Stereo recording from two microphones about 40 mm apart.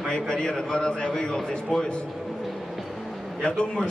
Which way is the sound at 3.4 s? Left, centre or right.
Left.